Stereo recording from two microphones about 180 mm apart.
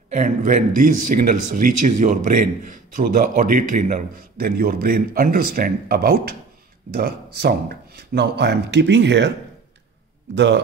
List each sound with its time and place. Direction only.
0.1 s a man's voice: 45° right (ahead or behind); by 9.3 s 75° right (ahead or behind)
10.3 s speech: 75° right (ahead or behind)